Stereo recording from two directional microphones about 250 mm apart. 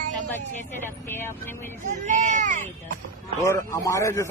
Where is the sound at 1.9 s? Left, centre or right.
Right.